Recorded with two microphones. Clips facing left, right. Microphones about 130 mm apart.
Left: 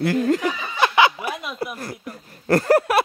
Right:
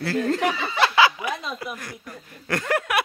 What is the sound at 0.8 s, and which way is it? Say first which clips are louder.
Snicker: left 2 dB; 20° left (ahead or behind).